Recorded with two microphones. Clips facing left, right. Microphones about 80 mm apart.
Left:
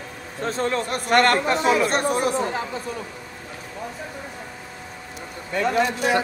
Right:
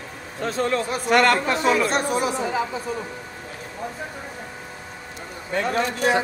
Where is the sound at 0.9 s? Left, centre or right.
Left.